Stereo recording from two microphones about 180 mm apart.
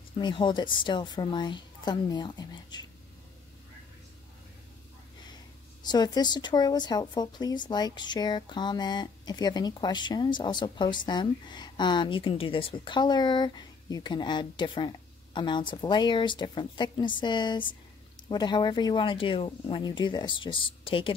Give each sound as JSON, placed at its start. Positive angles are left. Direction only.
{"t": 0.2, "sound": "speech", "side_deg": 25}
{"t": 5.2, "sound": "speech", "side_deg": 25}